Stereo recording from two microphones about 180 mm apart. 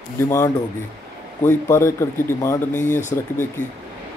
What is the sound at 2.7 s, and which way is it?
Speech, 45° left (ahead or behind).